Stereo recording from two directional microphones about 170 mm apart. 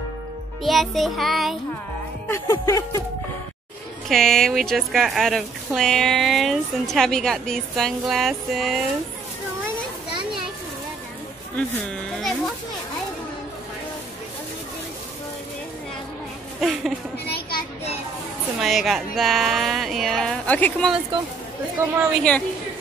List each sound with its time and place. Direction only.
0.6 s speech: centre (ahead or behind)
2.2 s music: 15° left (ahead or behind)
4.1 s speech: centre (ahead or behind)
11.5 s speech: 5° left (ahead or behind)
17.3 s child singing: 60° left (ahead or behind)
18.6 s speech: centre (ahead or behind)
21.8 s a woman's voice: 15° right (ahead or behind)